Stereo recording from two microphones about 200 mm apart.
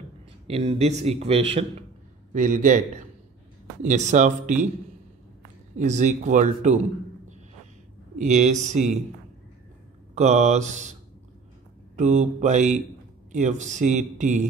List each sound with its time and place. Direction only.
0.5 s a man's voice: 30° right (ahead or behind)
3.8 s a man's voice: 35° right (ahead or behind)
5.8 s a man's voice: 35° right (ahead or behind)
8.2 s a man's voice: 35° right (ahead or behind)
10.1 s a man's voice: 35° right (ahead or behind)
12.0 s a man's voice: 35° right (ahead or behind)